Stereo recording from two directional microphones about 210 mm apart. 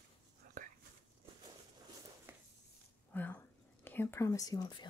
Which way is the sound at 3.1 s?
10° left (ahead or behind).